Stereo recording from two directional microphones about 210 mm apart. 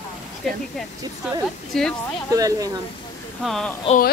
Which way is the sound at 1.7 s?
Centre (ahead or behind).